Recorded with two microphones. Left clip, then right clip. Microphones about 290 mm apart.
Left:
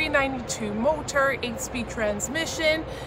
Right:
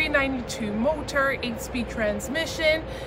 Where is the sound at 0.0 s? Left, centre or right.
Centre.